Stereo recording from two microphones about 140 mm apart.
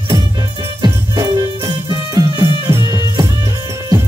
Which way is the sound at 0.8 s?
25° right (ahead or behind).